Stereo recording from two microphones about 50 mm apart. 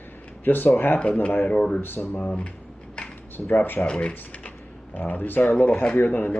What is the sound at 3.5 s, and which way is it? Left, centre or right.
Speech, left.